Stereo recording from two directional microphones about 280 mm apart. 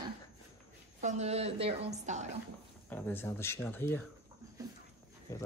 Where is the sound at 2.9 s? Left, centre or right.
Centre.